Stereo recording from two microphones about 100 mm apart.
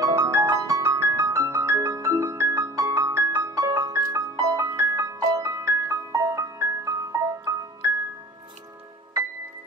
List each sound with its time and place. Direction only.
0.0 s music: 30° right (ahead or behind)